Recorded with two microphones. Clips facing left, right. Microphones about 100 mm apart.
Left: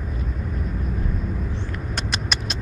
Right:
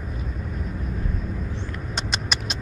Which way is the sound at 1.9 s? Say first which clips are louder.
Even; 15° right (ahead or behind).